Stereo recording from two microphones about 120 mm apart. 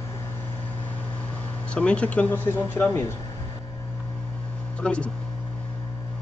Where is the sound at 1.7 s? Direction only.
10° left (ahead or behind).